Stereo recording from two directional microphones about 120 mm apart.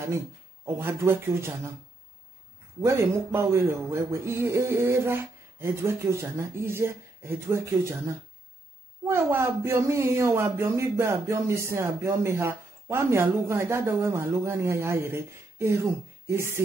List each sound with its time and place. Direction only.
0.7 s speech: 20° right (ahead or behind)
2.8 s speech: 25° right (ahead or behind)
9.0 s speech: 20° right (ahead or behind)